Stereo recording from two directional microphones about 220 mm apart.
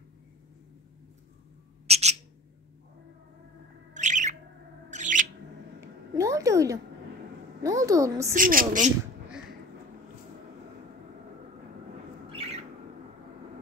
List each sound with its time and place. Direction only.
1.9 s owl: 30° right (ahead or behind)
3.9 s bird: 35° right (ahead or behind)
4.9 s a sound: 35° right (ahead or behind)
5.8 s a sound: 15° right (ahead or behind)
7.6 s a woman's voice: 15° right (ahead or behind)
8.4 s speech: 40° right (ahead or behind)
12.3 s squawk: 25° right (ahead or behind)